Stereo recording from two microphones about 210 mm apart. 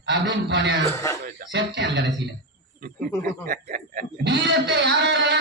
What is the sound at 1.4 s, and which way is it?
Speech, 55° right (ahead or behind).